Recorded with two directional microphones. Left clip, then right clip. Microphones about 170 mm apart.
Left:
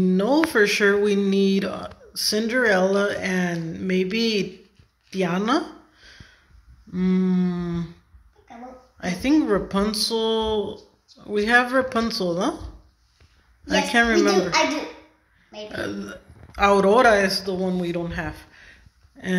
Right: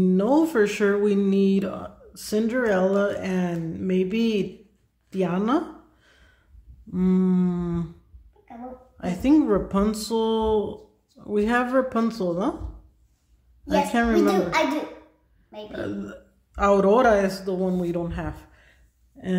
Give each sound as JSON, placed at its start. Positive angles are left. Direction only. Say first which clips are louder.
{"t": 0.0, "sound": "speech", "louder": "even", "side_deg": -15}
{"t": 6.9, "sound": "humming", "louder": "even", "side_deg": -25}
{"t": 8.9, "sound": "speech", "louder": "right 1 dB", "side_deg": -15}
{"t": 9.4, "sound": "speech", "louder": "even", "side_deg": -5}
{"t": 9.8, "sound": "speech", "louder": "left 1 dB", "side_deg": -15}
{"t": 13.7, "sound": "a child's voice", "louder": "left 3 dB", "side_deg": -10}
{"t": 15.9, "sound": "a man's voice", "louder": "left 1 dB", "side_deg": -10}